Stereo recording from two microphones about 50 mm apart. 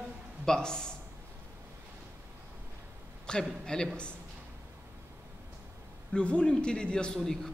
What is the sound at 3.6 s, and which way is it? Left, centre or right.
Speech, centre.